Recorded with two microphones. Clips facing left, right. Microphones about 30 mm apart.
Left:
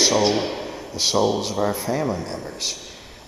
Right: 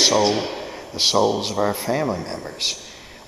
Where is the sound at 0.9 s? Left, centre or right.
Right.